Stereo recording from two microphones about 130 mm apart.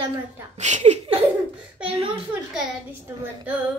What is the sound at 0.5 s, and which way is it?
Speech, 65° right (ahead or behind).